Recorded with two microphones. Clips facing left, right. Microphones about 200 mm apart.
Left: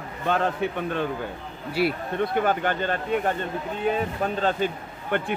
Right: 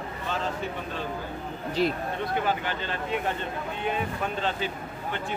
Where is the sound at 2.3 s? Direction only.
50° left (ahead or behind).